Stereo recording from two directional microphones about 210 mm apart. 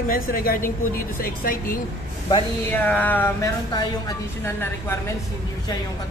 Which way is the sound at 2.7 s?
10° left (ahead or behind).